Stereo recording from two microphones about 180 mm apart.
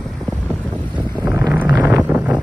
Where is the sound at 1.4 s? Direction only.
10° right (ahead or behind).